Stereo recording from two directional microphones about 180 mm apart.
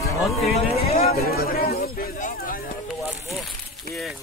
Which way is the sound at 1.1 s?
60° left (ahead or behind).